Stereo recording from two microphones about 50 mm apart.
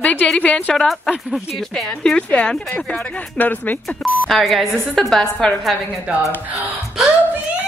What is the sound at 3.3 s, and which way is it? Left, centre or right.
Speech, left.